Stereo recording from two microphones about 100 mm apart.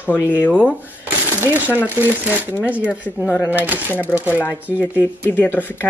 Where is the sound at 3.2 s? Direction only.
20° left (ahead or behind).